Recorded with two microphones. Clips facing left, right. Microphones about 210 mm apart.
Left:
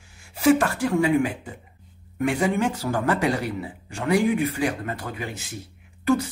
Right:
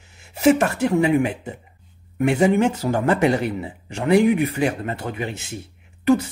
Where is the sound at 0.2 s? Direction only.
25° right (ahead or behind).